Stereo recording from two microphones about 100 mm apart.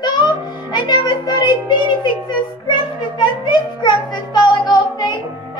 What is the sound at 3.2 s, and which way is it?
Music, 50° left (ahead or behind).